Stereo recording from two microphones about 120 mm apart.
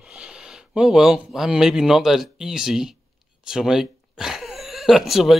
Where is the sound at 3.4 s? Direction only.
5° right (ahead or behind).